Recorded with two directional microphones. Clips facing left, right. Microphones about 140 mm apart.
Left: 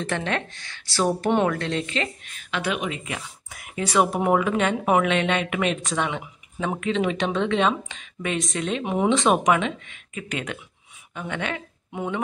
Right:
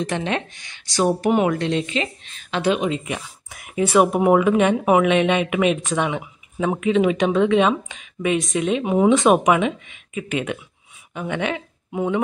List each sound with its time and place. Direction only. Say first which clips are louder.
0.0 s speech: right 3 dB; 20° right (ahead or behind)